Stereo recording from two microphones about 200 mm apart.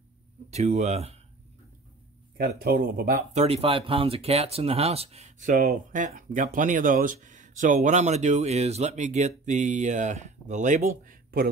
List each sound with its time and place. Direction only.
0.5 s speech: 35° right (ahead or behind)
2.3 s speech: 50° right (ahead or behind)
3.3 s speech: 30° right (ahead or behind); by 11.5 s 45° right (ahead or behind)